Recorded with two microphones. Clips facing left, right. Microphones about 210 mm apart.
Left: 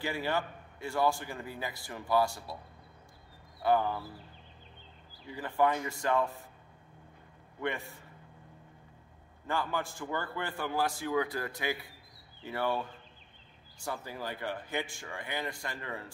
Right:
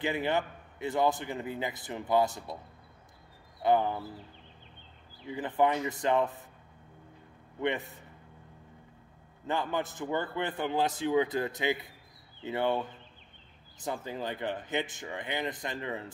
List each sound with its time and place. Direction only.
0.0 s a man's voice: 20° right (ahead or behind)
3.6 s a man's voice: 20° right (ahead or behind)
5.2 s a man's voice: 20° right (ahead or behind)
7.6 s a man's voice: 20° right (ahead or behind)
9.5 s a man's voice: 20° right (ahead or behind)